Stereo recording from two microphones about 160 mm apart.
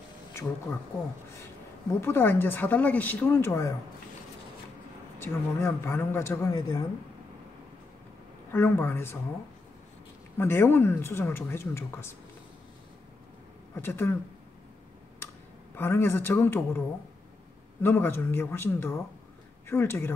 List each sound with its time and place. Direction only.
0.3 s speech: 15° left (ahead or behind)
2.0 s speech: 15° left (ahead or behind)
5.2 s speech: 15° left (ahead or behind)
8.5 s speech: 15° left (ahead or behind)
10.3 s speech: 15° left (ahead or behind)
13.7 s speech: 15° left (ahead or behind)
15.7 s speech: 15° left (ahead or behind)
17.8 s speech: 15° left (ahead or behind)